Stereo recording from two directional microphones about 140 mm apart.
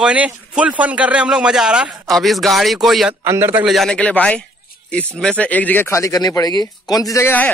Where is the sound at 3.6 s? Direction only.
Centre (ahead or behind).